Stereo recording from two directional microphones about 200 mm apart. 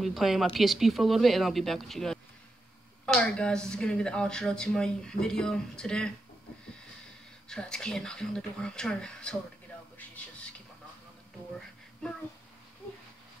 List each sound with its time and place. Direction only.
0.0 s speech: centre (ahead or behind)
7.4 s speech: 5° left (ahead or behind)